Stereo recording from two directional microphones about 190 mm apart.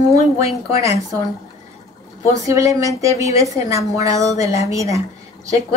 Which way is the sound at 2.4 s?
15° right (ahead or behind).